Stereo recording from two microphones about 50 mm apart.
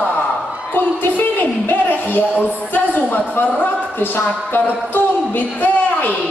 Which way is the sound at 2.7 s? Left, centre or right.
Left.